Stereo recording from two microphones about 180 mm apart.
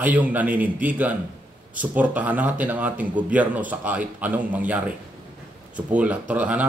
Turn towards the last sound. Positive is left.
turn(degrees=-10)  # may be behind; listen again after turning